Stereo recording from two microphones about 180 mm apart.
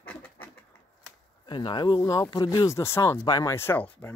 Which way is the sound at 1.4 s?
25° left (ahead or behind).